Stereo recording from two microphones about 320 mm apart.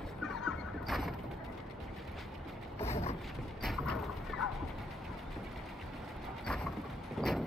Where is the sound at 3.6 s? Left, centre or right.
Centre.